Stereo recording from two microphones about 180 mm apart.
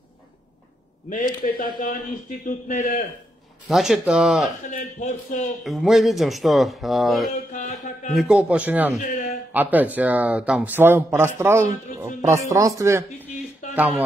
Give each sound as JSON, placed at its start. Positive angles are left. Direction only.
{"t": 1.1, "sound": "a man's voice", "side_deg": 50}
{"t": 3.6, "sound": "speech", "side_deg": 0}
{"t": 4.6, "sound": "a man's voice", "side_deg": 45}
{"t": 5.6, "sound": "speech", "side_deg": 0}